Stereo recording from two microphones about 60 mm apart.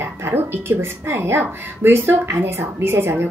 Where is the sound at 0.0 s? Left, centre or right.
Right.